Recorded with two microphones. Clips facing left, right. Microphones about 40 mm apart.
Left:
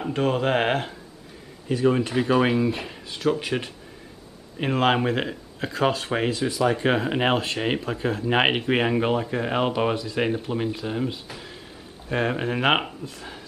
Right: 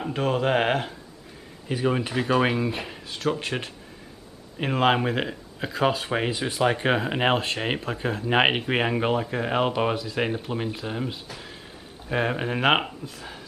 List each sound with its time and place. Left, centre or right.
0.0 s speech: centre
1.7 s speech: centre
6.5 s speech: right
6.9 s speech: centre